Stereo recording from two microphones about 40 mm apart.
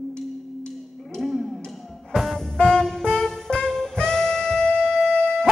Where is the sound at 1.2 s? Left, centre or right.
Centre.